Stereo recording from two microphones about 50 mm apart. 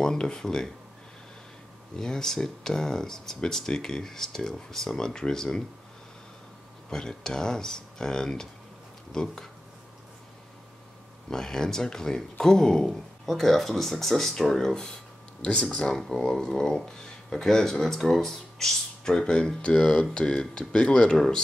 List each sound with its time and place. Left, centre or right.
0.0 s speech: centre
2.0 s speech: centre
6.9 s speech: centre
11.2 s speech: centre